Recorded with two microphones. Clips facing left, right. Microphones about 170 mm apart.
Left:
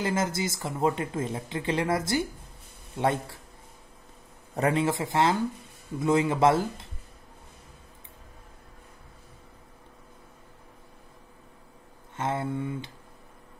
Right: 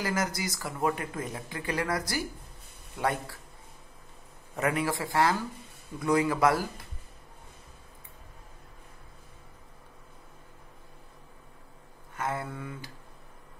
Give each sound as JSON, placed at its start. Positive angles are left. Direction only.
{"t": 0.0, "sound": "speech", "side_deg": 25}
{"t": 4.6, "sound": "speech", "side_deg": 25}
{"t": 12.2, "sound": "speech", "side_deg": 25}